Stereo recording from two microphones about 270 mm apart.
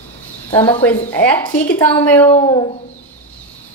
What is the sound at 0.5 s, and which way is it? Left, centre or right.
A woman's voice, centre.